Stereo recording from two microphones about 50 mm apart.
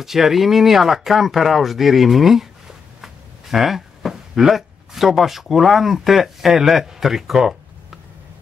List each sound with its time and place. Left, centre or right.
0.0 s speech: centre